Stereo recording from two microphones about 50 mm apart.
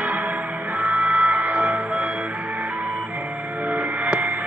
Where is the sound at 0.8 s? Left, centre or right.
Right.